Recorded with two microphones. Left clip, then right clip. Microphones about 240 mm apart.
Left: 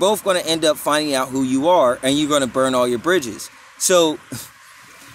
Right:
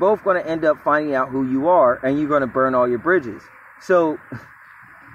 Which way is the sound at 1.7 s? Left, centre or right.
Left.